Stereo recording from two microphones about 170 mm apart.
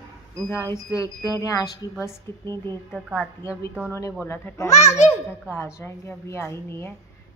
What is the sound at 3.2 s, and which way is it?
Speech, 15° left (ahead or behind).